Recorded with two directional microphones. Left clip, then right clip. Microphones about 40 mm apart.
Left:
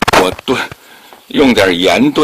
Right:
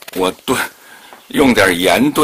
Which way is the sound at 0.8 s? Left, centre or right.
Centre.